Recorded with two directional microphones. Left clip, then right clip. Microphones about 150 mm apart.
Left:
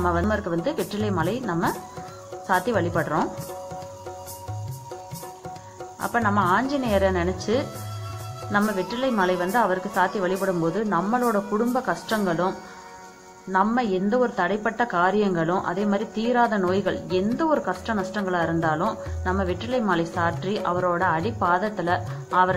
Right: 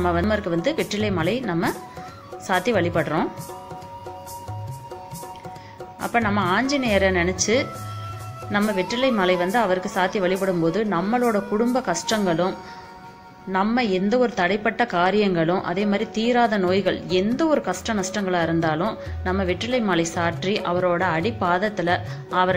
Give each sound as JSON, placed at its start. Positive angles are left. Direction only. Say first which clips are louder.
{"t": 0.3, "sound": "a woman's voice", "louder": "right 3 dB", "side_deg": -35}
{"t": 5.9, "sound": "a woman's voice", "louder": "even", "side_deg": -30}